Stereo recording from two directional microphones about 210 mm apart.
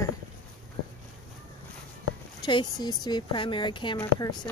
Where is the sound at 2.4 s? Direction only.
20° left (ahead or behind).